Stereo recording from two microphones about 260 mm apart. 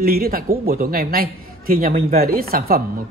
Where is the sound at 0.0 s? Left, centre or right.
Right.